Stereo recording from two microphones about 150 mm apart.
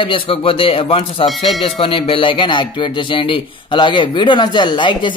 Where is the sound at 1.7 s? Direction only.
35° left (ahead or behind).